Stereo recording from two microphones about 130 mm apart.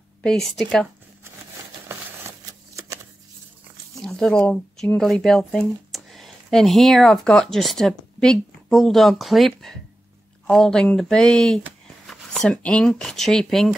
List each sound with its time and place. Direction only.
0.2 s speech: 5° left (ahead or behind)
1.9 s shuffling cards: 20° right (ahead or behind)
4.0 s a sound: 5° left (ahead or behind)
4.4 s speech: 10° left (ahead or behind)